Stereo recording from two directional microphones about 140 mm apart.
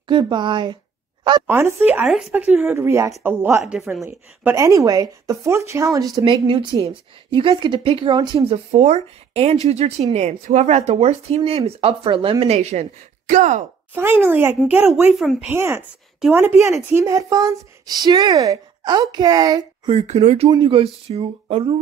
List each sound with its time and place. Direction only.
0.1 s speech: 35° right (ahead or behind)
1.5 s speech: 20° right (ahead or behind)
1.9 s a woman's voice: 5° right (ahead or behind)
3.6 s speech: 5° right (ahead or behind)
4.6 s speech: 25° right (ahead or behind); by 12.8 s 50° right (ahead or behind)
13.3 s speech: 65° right (ahead or behind)
13.9 s a woman's voice: 15° right (ahead or behind)
19.9 s speech: 50° right (ahead or behind)
20.4 s speech: 35° right (ahead or behind)